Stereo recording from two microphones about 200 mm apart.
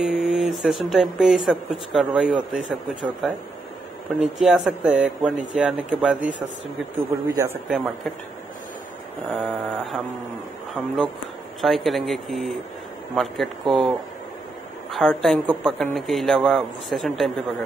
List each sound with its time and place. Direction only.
0.0 s a man's voice: centre (ahead or behind)
4.4 s a man's voice: 5° right (ahead or behind)
7.7 s a man's voice: centre (ahead or behind)
9.3 s mantra: centre (ahead or behind)
11.6 s a man's voice: centre (ahead or behind)